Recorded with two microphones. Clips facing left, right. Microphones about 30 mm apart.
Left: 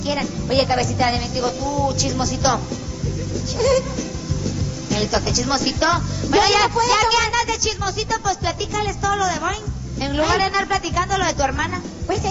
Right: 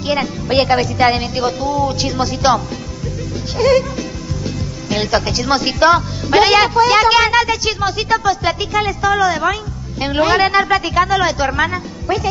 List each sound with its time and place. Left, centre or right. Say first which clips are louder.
0.0 s speech: right 5 dB; right
4.8 s speech: right 4 dB; right